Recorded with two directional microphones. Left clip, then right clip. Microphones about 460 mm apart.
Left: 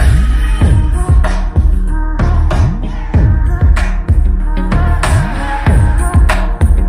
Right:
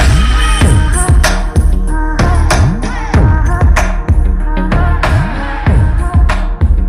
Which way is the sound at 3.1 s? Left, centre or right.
Right.